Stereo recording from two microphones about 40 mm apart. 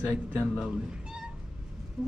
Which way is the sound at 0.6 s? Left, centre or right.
Right.